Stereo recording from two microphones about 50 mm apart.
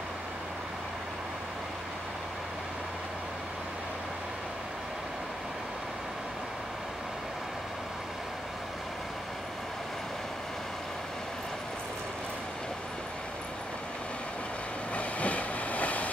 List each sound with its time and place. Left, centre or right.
15.0 s train: left